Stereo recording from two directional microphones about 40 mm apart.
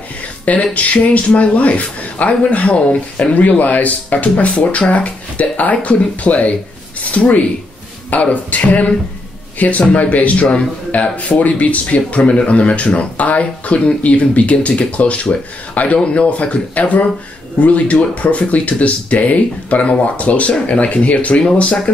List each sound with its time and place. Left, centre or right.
0.5 s speech: left